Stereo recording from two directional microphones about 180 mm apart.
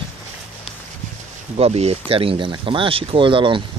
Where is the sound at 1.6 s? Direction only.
35° right (ahead or behind).